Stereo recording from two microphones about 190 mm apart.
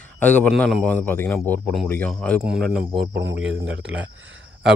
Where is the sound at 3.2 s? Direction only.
75° right (ahead or behind).